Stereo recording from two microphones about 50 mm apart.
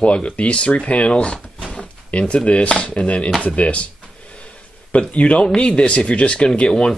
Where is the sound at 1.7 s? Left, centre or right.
Left.